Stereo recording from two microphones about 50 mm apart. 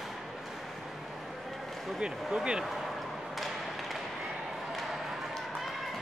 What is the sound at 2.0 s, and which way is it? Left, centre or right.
Speech, centre.